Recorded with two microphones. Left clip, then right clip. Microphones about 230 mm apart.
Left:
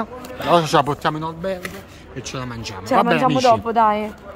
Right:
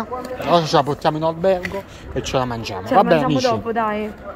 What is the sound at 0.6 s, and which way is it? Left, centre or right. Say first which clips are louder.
Speech: right 1 dB; centre.